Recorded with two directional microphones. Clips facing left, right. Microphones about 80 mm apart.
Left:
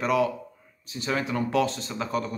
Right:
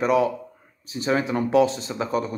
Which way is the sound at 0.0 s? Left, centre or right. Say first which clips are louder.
Right 4 dB; right.